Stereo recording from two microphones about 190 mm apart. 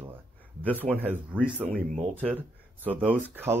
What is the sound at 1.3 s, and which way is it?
Speech, 10° right (ahead or behind).